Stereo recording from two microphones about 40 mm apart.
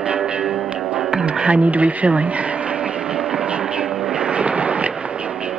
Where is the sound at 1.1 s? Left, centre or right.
Right.